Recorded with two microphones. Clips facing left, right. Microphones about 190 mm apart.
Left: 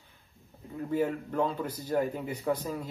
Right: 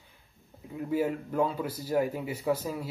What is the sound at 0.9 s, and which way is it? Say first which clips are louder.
A man's voice: right 1 dB; 10° right (ahead or behind).